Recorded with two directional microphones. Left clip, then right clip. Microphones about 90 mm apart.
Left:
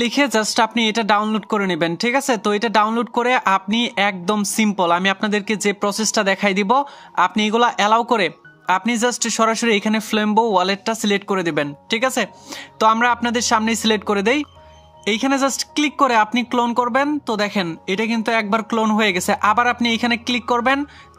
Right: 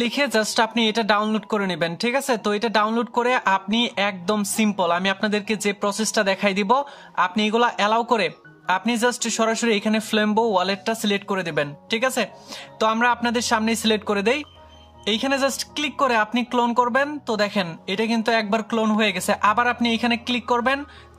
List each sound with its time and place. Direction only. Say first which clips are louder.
0.0 s speech: left 3 dB; 45° left (ahead or behind)
0.5 s speech: left 3 dB; 30° left (ahead or behind)
7.2 s speech: left 3 dB; 40° left (ahead or behind)